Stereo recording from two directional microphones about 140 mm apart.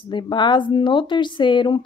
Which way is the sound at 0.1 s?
35° left (ahead or behind).